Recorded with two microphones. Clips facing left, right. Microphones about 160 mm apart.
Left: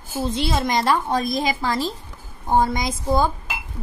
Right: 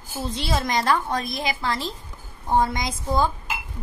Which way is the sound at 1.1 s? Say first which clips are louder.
Left 5 dB; 40° left (ahead or behind).